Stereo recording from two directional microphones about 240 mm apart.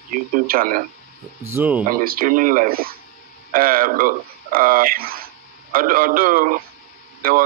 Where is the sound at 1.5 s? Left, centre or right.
Centre.